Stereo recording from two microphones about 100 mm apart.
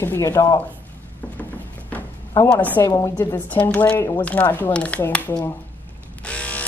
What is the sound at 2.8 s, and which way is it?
Speech, 30° left (ahead or behind).